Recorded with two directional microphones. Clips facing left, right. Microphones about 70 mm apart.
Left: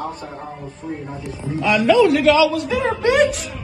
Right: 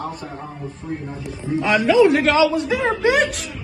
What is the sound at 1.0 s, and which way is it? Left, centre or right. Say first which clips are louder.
Speech: left 1 dB; centre.